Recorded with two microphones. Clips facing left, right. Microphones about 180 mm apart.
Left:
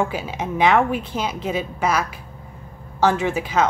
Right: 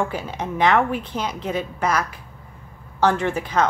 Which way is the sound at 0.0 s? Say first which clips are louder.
Left 1 dB; 10° left (ahead or behind).